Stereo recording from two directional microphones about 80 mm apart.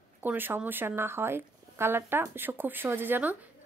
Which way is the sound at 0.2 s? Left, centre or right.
Right.